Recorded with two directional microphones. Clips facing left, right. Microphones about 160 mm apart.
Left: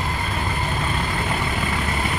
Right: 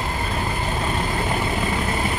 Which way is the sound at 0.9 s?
20° right (ahead or behind).